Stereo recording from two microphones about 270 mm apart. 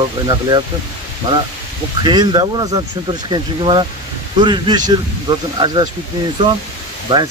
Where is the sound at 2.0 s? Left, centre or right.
Centre.